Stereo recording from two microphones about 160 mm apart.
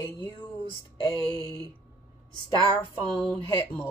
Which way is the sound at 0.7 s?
30° right (ahead or behind).